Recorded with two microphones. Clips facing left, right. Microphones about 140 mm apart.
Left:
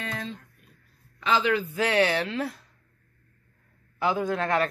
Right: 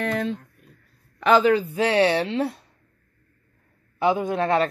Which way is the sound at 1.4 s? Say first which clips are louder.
Right 6 dB; 30° right (ahead or behind).